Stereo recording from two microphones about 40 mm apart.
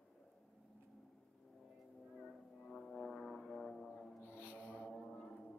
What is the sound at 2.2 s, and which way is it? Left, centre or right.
Music, centre.